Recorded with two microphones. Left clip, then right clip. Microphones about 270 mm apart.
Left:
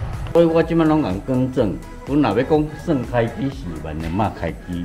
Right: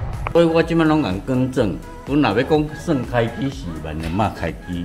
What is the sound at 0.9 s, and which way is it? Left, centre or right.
Speech, right.